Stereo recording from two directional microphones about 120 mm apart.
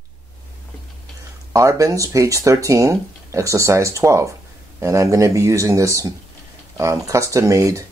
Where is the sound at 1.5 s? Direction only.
25° right (ahead or behind).